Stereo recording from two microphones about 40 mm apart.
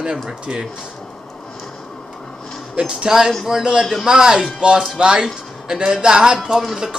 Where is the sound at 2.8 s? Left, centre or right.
Right.